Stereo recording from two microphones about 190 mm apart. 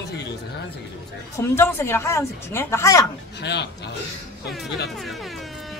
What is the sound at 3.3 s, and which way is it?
Speech, 60° left (ahead or behind).